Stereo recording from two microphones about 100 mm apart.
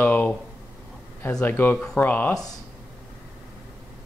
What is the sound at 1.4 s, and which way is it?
Speech, 20° left (ahead or behind).